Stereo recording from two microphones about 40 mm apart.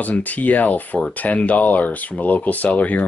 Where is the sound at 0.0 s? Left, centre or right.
Left.